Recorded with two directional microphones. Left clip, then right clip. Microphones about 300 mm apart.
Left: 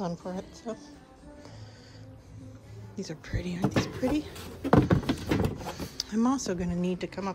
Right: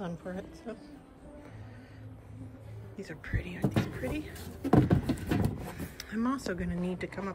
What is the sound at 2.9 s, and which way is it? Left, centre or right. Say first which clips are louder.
Speech: left 2 dB; centre.